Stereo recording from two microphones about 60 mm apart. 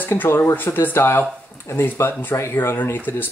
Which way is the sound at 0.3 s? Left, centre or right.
Left.